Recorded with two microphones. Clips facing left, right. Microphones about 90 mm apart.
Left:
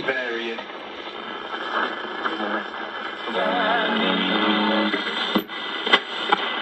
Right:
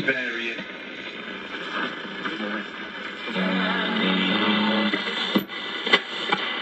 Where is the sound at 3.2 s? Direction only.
45° left (ahead or behind).